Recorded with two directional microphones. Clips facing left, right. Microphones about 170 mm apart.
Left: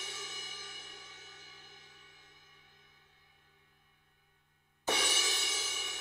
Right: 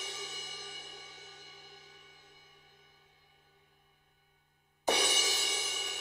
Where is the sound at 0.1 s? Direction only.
35° right (ahead or behind).